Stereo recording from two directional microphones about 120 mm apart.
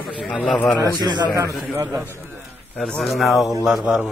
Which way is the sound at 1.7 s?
20° right (ahead or behind).